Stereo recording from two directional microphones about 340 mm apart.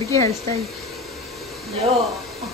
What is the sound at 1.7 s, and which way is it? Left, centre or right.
Speech, centre.